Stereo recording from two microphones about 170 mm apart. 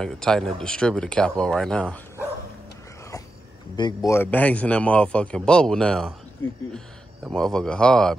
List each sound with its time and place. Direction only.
0.0 s speech: 5° left (ahead or behind)
3.7 s speech: 25° left (ahead or behind)
4.1 s a man's voice: 10° left (ahead or behind)
7.2 s speech: 5° left (ahead or behind)